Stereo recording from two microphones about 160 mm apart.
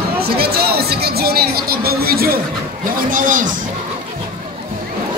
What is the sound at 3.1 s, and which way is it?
Speech, 55° right (ahead or behind).